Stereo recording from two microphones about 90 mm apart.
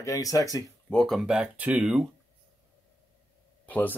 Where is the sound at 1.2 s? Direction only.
10° right (ahead or behind).